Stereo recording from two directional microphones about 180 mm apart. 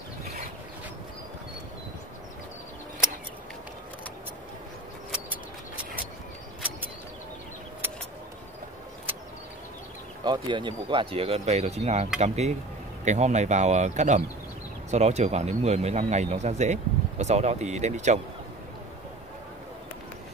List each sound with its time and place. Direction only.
10.2 s speech: 25° right (ahead or behind); by 18.2 s 40° right (ahead or behind)